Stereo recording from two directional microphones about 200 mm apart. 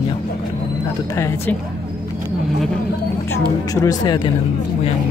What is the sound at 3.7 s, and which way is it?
Speech, 20° left (ahead or behind).